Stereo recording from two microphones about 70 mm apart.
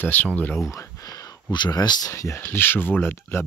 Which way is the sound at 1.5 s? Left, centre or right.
Left.